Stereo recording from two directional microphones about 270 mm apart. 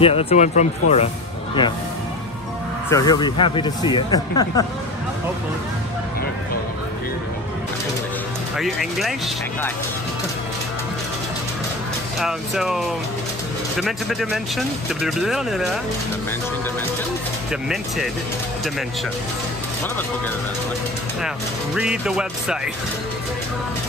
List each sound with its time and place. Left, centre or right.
0.0 s speech: left
2.9 s speech: centre
8.5 s speech: centre
12.2 s speech: centre
17.5 s speech: centre
21.7 s speech: centre